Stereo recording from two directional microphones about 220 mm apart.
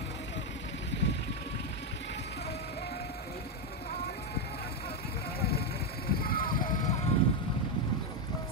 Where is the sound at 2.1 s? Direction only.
50° left (ahead or behind).